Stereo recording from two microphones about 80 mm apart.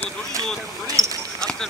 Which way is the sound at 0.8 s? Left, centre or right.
Right.